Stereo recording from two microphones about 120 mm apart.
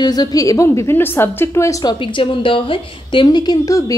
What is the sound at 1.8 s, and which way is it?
A woman's voice, 45° left (ahead or behind).